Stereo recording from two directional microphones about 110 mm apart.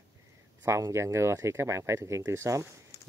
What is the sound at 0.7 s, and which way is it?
Speech, 25° right (ahead or behind).